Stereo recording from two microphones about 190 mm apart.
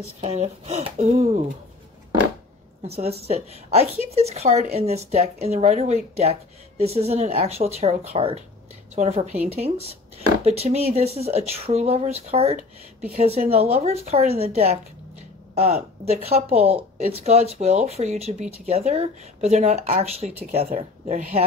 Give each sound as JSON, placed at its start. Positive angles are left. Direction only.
{"t": 0.2, "sound": "speech", "side_deg": -35}
{"t": 2.8, "sound": "speech", "side_deg": -35}